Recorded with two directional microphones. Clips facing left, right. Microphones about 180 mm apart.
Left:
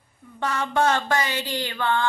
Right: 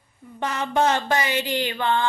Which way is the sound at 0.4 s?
20° right (ahead or behind).